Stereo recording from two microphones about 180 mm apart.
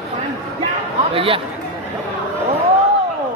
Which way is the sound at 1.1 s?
30° right (ahead or behind).